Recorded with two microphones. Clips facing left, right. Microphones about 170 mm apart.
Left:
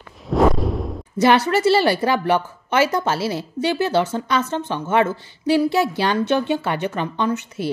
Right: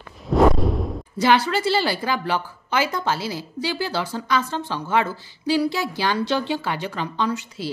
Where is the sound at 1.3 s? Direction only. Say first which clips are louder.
Left 3 dB; 60° left (ahead or behind).